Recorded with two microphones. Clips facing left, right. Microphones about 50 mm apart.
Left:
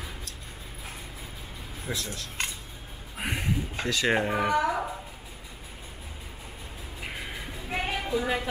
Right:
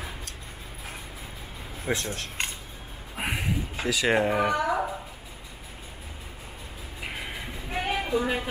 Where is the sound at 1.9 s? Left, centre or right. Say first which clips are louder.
Right 6 dB; right.